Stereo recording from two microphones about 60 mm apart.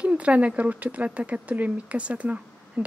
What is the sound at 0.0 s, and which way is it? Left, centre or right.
A woman's voice, centre.